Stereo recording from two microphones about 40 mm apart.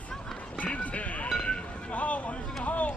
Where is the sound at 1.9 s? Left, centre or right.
Left.